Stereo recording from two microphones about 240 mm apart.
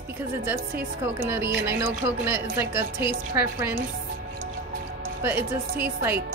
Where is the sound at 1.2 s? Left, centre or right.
Centre.